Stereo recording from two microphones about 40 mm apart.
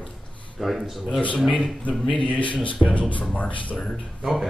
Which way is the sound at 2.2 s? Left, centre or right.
Left.